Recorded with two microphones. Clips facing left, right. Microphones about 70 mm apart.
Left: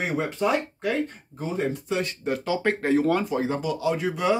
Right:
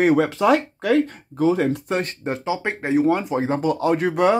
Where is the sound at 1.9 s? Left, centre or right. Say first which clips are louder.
Right 3 dB; right.